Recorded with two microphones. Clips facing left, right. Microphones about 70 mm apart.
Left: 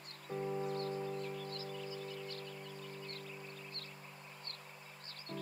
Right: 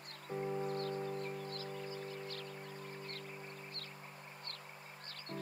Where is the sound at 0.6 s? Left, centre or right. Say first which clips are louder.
Even; right.